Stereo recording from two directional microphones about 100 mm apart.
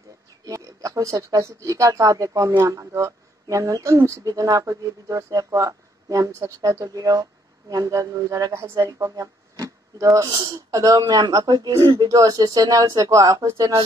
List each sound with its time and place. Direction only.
0.5 s a woman's voice: 35° right (ahead or behind)
10.3 s speech: 45° right (ahead or behind)